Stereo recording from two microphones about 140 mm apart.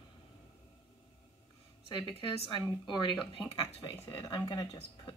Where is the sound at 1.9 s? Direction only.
40° left (ahead or behind).